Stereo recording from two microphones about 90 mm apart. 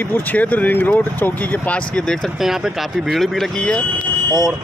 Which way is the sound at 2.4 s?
5° right (ahead or behind).